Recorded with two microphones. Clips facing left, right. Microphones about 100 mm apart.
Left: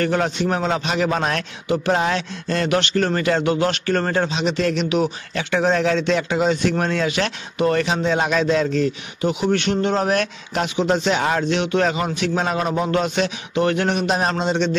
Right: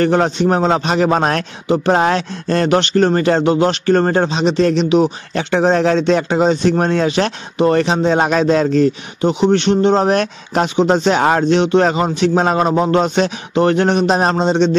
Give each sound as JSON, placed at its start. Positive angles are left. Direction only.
{"t": 0.0, "sound": "a man's voice", "side_deg": -35}